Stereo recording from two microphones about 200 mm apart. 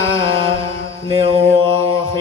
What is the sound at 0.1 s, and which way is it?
Music, 25° right (ahead or behind).